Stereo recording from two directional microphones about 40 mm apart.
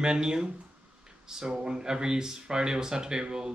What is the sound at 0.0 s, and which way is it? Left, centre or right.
Speech, centre.